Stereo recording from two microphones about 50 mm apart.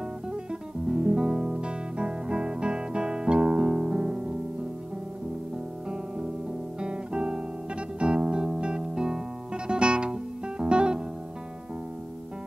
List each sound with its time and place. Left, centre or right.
0.3 s guitar: centre
6.8 s guitar: centre